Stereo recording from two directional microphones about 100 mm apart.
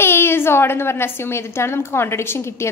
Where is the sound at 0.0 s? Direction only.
25° left (ahead or behind).